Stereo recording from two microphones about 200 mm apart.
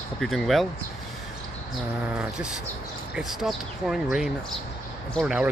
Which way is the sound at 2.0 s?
5° right (ahead or behind).